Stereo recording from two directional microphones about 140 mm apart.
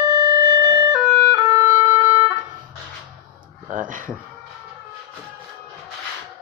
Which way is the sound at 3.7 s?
70° right (ahead or behind).